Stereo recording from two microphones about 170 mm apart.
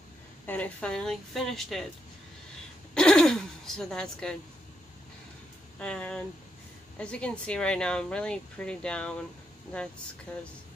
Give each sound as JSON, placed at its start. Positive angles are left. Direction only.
{"t": 0.5, "sound": "speech", "side_deg": 10}
{"t": 2.9, "sound": "a sound", "side_deg": 5}
{"t": 5.8, "sound": "speech", "side_deg": 5}
{"t": 10.3, "sound": "speech", "side_deg": 5}